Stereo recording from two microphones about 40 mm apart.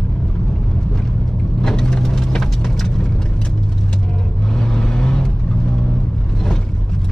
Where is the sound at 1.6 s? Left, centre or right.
Centre.